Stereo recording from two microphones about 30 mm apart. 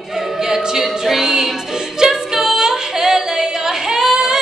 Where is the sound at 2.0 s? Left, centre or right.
Centre.